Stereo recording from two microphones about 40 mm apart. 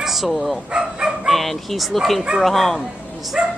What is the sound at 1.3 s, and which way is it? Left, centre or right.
Speech, centre.